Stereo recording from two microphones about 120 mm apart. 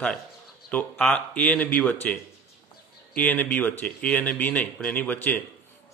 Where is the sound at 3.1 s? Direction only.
15° left (ahead or behind).